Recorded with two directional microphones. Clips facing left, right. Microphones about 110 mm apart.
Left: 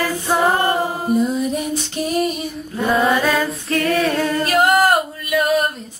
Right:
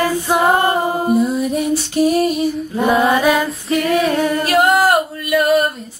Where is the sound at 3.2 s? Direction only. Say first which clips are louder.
Right 3 dB; 15° right (ahead or behind).